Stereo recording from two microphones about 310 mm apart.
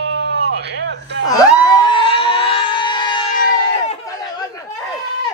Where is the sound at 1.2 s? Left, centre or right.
Centre.